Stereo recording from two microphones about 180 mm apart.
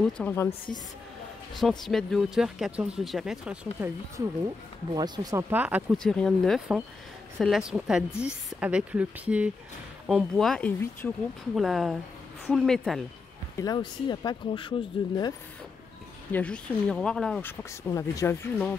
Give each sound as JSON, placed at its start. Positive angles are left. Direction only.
{"t": 0.0, "sound": "speech", "side_deg": 10}
{"t": 1.5, "sound": "speech", "side_deg": 0}
{"t": 4.9, "sound": "speech", "side_deg": -20}
{"t": 5.5, "sound": "speech", "side_deg": -10}
{"t": 11.5, "sound": "speech", "side_deg": 0}
{"t": 13.6, "sound": "speech", "side_deg": 25}
{"t": 16.3, "sound": "speech", "side_deg": 10}